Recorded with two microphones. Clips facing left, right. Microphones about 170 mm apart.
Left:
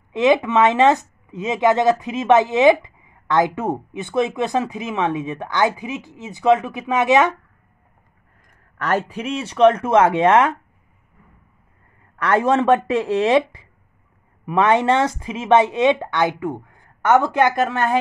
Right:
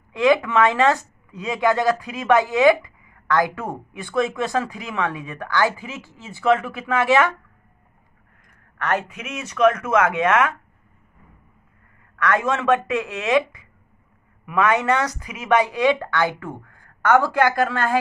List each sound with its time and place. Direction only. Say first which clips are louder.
0.1 s speech: left 2 dB; 20° left (ahead or behind)
8.8 s speech: left 3 dB; 35° left (ahead or behind)
12.2 s speech: left 4 dB; 30° left (ahead or behind)